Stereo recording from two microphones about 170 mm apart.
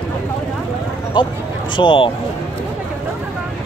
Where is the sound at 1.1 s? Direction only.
25° left (ahead or behind).